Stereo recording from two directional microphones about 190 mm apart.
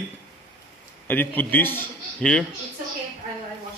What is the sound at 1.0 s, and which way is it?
A man's voice, 10° left (ahead or behind).